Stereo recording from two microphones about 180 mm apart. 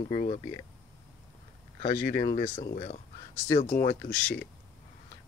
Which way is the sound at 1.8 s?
30° left (ahead or behind).